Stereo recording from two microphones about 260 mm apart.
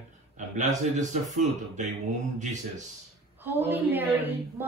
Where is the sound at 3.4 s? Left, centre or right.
Centre.